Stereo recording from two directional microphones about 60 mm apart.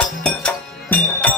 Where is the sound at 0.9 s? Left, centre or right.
Left.